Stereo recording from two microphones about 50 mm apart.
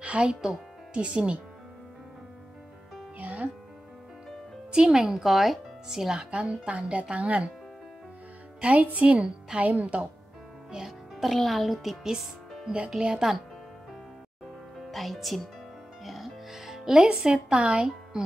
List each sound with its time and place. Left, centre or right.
0.0 s speech: right
3.2 s music: right
4.7 s a woman's voice: centre
6.3 s speech: right
8.5 s speech: right
10.7 s music: centre
11.2 s a woman's voice: centre
14.8 s music: centre